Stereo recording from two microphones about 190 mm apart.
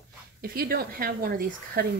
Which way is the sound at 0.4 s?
50° right (ahead or behind).